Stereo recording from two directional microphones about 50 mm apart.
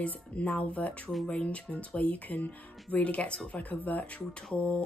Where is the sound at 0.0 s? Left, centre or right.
Left.